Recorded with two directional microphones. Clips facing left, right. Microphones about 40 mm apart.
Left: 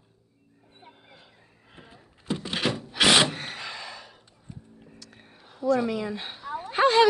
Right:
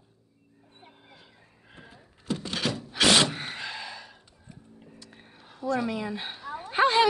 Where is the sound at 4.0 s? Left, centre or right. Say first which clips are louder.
Even; centre.